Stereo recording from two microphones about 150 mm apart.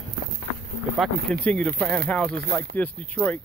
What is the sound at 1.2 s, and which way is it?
Speech, 5° left (ahead or behind).